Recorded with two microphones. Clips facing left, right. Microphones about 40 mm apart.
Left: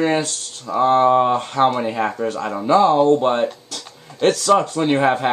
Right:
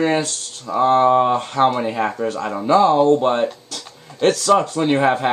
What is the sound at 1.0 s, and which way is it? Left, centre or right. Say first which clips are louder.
Speech: even; centre.